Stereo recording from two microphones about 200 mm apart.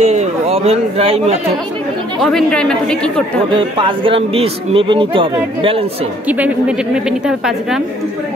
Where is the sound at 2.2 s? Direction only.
5° left (ahead or behind).